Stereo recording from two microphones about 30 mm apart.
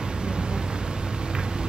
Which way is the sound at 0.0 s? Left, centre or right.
Right.